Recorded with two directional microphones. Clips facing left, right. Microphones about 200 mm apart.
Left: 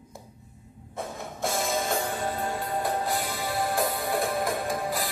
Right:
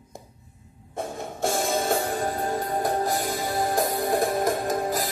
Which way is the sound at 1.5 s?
50° right (ahead or behind).